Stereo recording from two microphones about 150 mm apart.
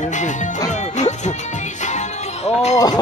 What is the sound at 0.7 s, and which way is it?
Music, 50° left (ahead or behind).